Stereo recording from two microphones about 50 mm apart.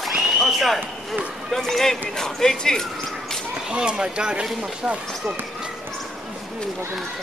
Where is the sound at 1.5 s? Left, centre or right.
Centre.